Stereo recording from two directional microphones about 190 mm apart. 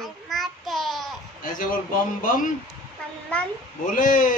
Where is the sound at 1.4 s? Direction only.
45° left (ahead or behind).